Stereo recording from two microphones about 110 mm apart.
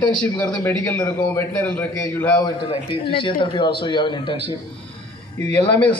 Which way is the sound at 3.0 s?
50° left (ahead or behind).